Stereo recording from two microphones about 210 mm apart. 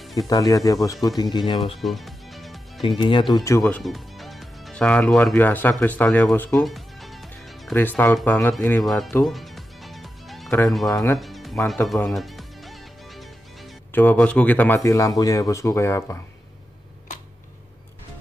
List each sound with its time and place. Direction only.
0.1 s speech: 15° left (ahead or behind)
1.8 s music: centre (ahead or behind)
3.0 s speech: 20° left (ahead or behind); by 9.1 s centre (ahead or behind)
9.1 s music: centre (ahead or behind)
10.9 s speech: 15° left (ahead or behind)
11.1 s music: centre (ahead or behind)
11.6 s speech: centre (ahead or behind)